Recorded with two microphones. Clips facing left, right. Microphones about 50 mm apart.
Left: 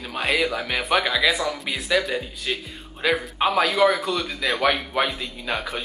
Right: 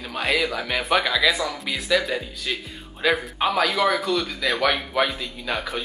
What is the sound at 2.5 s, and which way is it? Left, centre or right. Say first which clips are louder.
Speech: left 1 dB; centre.